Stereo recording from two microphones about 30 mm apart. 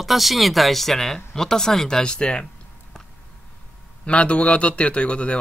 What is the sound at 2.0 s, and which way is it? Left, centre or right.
Speech, left.